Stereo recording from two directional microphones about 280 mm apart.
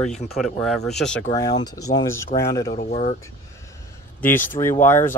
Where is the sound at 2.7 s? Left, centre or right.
Left.